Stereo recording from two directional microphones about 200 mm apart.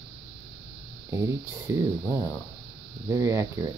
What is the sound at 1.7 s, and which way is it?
Speech, 15° right (ahead or behind).